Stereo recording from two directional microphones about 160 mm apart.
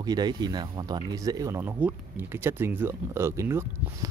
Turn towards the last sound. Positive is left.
turn(degrees=-15)  # may be behind; listen again after turning